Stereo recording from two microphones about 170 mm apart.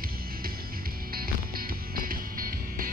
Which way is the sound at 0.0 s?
60° right (ahead or behind).